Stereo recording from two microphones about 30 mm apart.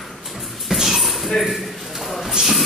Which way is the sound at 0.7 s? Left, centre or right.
Centre.